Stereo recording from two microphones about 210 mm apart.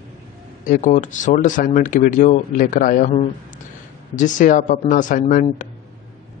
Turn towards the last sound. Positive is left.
turn(degrees=40)  # may be behind; listen again after turning